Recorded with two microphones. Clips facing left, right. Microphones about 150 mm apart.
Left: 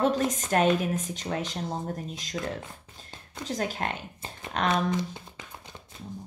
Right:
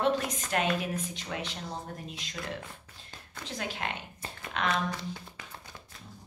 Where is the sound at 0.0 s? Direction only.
45° left (ahead or behind).